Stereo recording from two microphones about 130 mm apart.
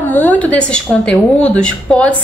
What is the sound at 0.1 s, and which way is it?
Speech, 15° left (ahead or behind).